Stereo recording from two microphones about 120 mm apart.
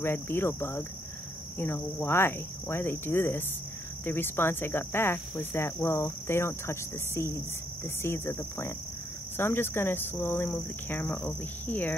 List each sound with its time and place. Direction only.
0.0 s cricket: 20° left (ahead or behind)